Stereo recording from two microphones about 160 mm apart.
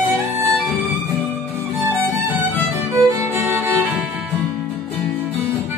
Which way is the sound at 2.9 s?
15° right (ahead or behind).